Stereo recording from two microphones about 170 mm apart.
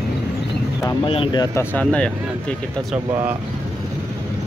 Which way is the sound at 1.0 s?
30° left (ahead or behind).